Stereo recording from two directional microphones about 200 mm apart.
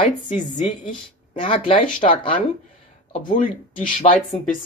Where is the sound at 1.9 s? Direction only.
40° left (ahead or behind).